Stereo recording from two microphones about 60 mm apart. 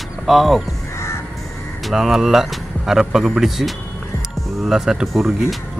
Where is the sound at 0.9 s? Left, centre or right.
Left.